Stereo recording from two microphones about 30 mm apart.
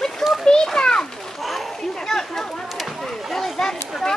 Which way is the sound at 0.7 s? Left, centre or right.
Left.